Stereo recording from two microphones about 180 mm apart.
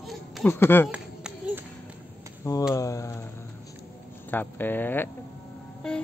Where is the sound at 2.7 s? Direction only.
15° left (ahead or behind).